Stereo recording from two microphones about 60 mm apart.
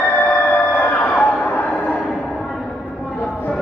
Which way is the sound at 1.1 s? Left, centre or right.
Centre.